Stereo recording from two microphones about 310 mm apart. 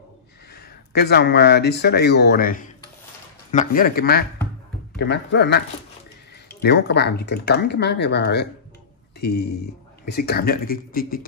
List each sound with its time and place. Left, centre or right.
0.6 s speech: left
6.6 s speech: left